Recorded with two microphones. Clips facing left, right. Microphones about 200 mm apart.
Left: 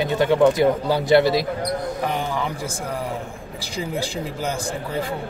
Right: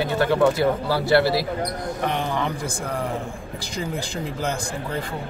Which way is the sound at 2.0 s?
5° left (ahead or behind).